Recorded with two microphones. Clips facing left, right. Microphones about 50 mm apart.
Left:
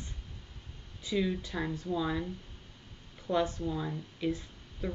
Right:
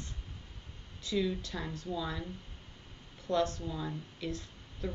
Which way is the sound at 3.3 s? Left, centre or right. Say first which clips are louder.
Left 1 dB; centre.